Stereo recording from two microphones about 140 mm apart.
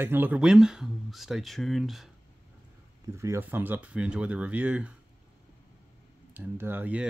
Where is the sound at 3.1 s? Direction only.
20° right (ahead or behind).